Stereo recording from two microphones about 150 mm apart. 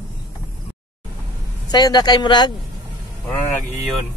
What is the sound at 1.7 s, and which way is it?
Speech, 30° left (ahead or behind).